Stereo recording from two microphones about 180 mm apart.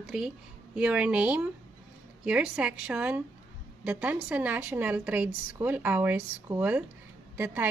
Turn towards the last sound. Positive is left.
turn(degrees=-10)  # may be behind; listen again after turning